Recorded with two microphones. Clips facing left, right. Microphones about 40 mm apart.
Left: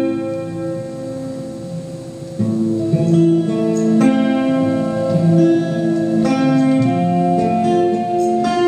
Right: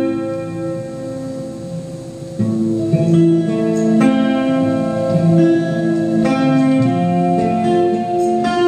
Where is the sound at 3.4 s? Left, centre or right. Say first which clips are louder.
Right 1 dB; centre.